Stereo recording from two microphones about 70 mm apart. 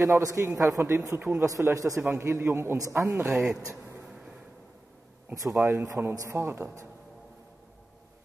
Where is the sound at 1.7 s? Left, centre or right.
Right.